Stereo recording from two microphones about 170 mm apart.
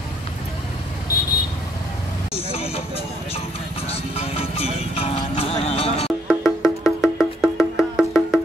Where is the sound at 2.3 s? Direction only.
35° left (ahead or behind).